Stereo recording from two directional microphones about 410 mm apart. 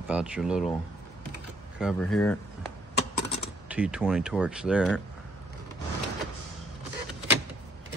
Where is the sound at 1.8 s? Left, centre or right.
Centre.